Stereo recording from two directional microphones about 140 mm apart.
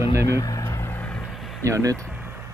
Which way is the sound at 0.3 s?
25° left (ahead or behind).